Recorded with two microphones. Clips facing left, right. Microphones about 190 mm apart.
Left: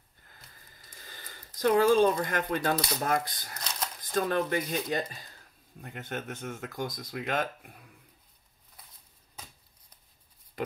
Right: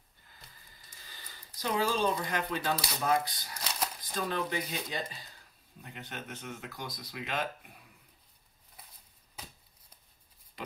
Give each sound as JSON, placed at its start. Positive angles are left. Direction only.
{"t": 0.8, "sound": "speech", "side_deg": 50}